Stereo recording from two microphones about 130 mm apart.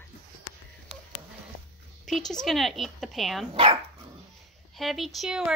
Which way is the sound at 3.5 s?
45° right (ahead or behind).